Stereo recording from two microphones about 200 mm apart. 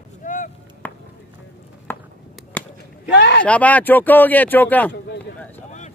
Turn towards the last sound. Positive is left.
turn(degrees=10)  # may be behind; listen again after turning